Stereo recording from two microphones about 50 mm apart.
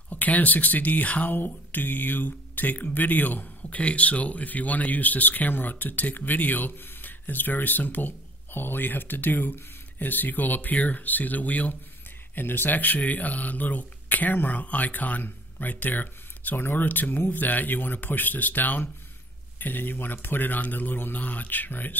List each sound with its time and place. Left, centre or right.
0.1 s speech: left
12.4 s speech: left